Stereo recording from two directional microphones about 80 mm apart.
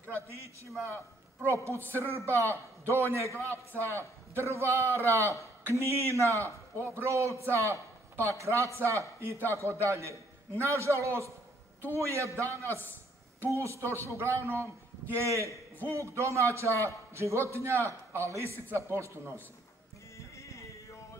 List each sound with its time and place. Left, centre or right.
1.4 s a man's voice: right
12.4 s a man's voice: left
13.4 s a man's voice: right
20.2 s music: left